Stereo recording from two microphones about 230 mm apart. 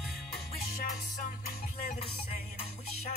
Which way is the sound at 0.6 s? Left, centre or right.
Left.